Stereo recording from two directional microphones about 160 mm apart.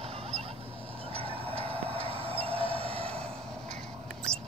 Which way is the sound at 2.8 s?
35° right (ahead or behind).